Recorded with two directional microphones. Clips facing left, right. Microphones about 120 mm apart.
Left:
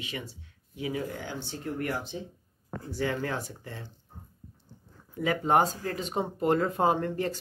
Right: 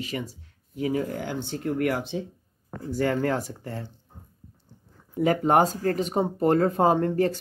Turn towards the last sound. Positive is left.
turn(degrees=-45)  # may be behind; listen again after turning